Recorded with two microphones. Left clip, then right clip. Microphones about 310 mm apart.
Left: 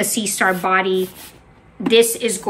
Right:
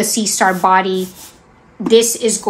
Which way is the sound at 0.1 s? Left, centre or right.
Centre.